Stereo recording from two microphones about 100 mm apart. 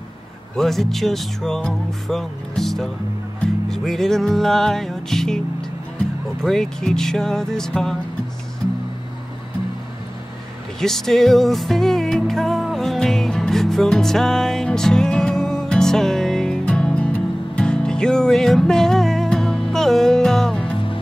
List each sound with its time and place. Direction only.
0.6 s music: 5° left (ahead or behind)
6.4 s music: 5° left (ahead or behind)
10.8 s music: 5° left (ahead or behind)